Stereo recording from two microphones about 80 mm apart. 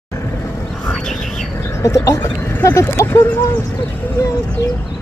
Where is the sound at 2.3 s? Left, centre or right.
Left.